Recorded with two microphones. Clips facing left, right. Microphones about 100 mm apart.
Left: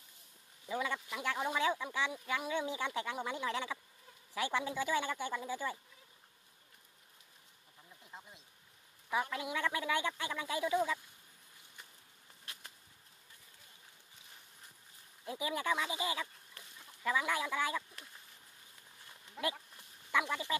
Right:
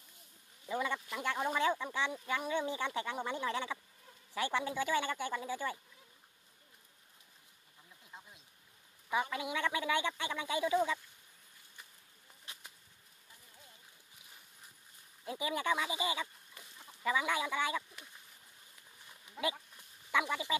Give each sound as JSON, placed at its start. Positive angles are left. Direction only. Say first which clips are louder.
{"t": 0.7, "sound": "speech", "louder": "right 1 dB", "side_deg": 0}
{"t": 8.0, "sound": "a sound", "louder": "left 1 dB", "side_deg": 5}
{"t": 9.1, "sound": "speech", "louder": "right 1 dB", "side_deg": 0}
{"t": 15.2, "sound": "speech", "louder": "right 1 dB", "side_deg": 0}
{"t": 19.3, "sound": "speech", "louder": "right 1 dB", "side_deg": -5}